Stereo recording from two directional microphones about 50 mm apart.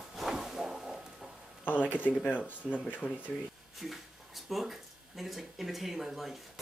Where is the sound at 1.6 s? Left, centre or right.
Left.